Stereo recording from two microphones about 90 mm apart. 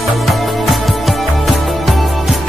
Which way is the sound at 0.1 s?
Centre (ahead or behind).